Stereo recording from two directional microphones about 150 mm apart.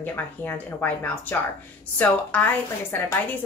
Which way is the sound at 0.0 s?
10° left (ahead or behind).